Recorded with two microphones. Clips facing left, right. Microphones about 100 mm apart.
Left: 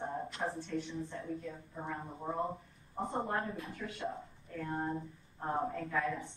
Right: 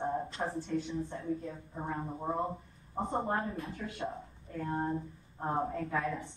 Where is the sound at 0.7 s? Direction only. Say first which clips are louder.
Right 4 dB; 30° right (ahead or behind).